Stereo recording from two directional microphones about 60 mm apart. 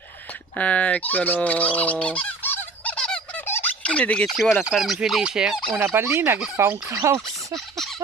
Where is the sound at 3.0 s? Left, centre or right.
Centre.